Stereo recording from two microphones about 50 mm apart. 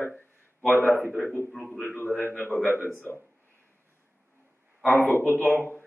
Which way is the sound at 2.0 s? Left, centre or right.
Left.